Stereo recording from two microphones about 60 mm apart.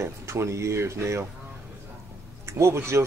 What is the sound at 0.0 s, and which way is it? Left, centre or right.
Speech, right.